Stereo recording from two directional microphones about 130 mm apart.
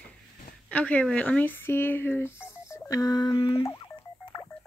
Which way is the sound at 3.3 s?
45° left (ahead or behind).